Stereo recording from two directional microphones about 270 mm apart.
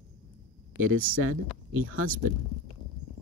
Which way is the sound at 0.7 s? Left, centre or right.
Right.